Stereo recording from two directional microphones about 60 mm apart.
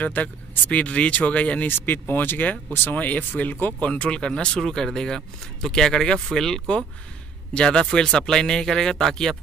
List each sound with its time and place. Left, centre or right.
0.0 s speech: left
1.7 s speech: left; by 9.4 s centre